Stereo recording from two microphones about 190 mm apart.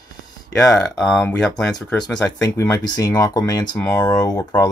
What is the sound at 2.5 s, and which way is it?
Speech, 15° left (ahead or behind).